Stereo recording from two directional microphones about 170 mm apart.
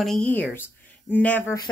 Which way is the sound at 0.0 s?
5° left (ahead or behind).